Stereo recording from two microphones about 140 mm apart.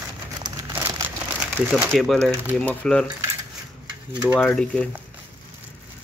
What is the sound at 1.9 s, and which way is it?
Speech, centre (ahead or behind).